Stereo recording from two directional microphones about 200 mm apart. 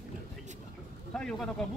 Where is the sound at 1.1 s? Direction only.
5° left (ahead or behind).